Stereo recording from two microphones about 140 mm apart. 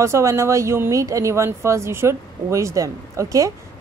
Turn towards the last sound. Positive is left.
turn(degrees=-25)  # may be behind; listen again after turning